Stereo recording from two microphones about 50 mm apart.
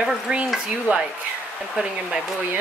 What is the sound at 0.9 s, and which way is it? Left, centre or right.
Speech, right.